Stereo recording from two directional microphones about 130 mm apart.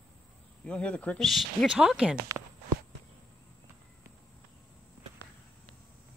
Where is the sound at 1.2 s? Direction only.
Centre (ahead or behind).